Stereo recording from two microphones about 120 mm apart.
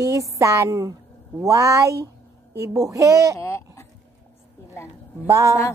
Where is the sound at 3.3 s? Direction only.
20° left (ahead or behind).